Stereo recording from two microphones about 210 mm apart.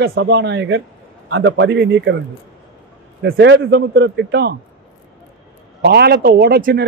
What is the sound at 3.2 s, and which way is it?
A man's voice, 55° right (ahead or behind).